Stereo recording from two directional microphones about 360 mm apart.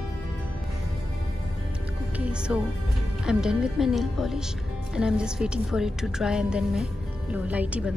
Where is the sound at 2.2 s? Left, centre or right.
Centre.